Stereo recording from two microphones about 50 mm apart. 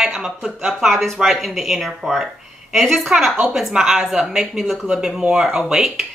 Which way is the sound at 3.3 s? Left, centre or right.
Centre.